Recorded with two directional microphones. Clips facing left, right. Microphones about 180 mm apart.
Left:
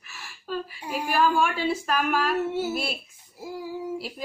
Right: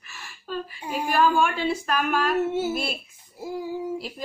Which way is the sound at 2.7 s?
5° left (ahead or behind).